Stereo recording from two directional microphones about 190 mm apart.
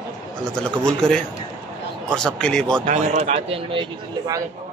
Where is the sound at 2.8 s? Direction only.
35° right (ahead or behind).